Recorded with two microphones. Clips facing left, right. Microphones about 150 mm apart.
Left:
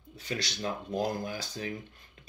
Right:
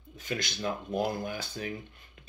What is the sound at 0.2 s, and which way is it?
Speech, 35° left (ahead or behind).